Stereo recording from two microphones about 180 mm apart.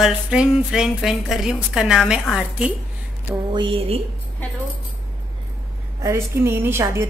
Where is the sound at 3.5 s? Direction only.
30° right (ahead or behind).